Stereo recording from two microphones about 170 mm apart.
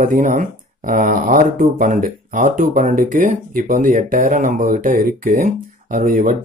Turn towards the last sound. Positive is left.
turn(degrees=-50)  # may be behind; listen again after turning